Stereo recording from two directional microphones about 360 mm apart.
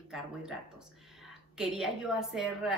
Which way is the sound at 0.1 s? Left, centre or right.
Centre.